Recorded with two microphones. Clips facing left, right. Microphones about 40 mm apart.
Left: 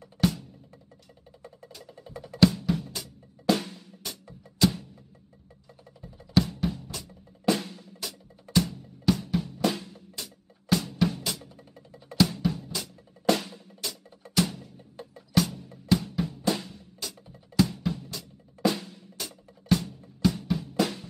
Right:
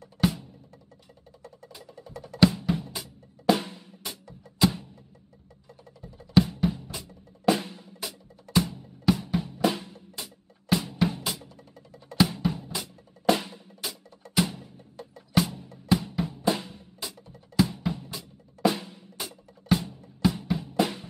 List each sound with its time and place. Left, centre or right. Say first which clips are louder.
0.2 s percussion: even; right
2.4 s drum: even; centre
4.6 s music: even; centre
6.4 s drum: right 3 dB; centre
13.8 s music: even; right
15.0 s music: even; left
15.3 s music: even; centre
15.9 s drum: even; centre